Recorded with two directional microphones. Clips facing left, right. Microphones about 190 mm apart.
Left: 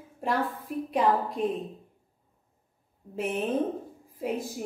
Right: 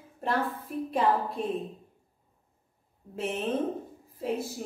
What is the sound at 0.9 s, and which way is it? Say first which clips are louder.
Speech: left 1 dB; 15° left (ahead or behind).